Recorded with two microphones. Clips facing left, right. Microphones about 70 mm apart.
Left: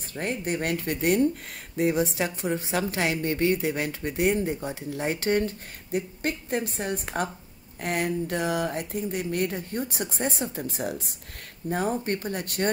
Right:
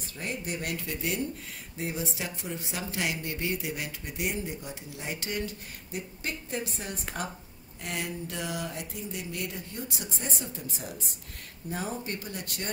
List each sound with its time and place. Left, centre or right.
0.1 s a woman's voice: left